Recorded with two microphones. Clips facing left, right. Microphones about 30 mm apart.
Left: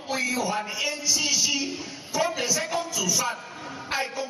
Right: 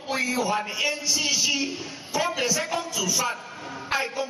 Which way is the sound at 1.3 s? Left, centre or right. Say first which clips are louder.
Right 1 dB; right.